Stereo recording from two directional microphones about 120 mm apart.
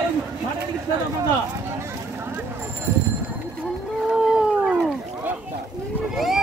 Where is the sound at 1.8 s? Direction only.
20° right (ahead or behind).